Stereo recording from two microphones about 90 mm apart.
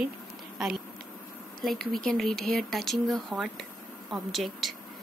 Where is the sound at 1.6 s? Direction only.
Centre (ahead or behind).